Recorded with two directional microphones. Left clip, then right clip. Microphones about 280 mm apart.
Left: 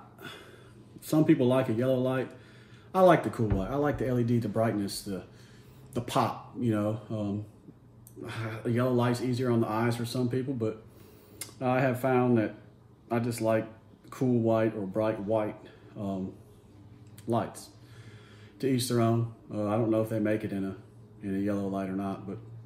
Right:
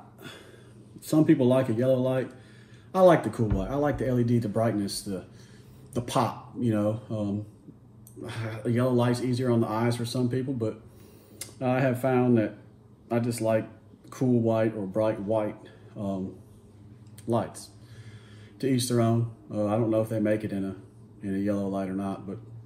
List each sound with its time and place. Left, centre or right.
1.1 s speech: centre
17.3 s speech: centre
18.6 s speech: centre